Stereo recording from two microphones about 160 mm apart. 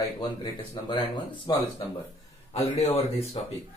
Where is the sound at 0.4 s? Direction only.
30° left (ahead or behind).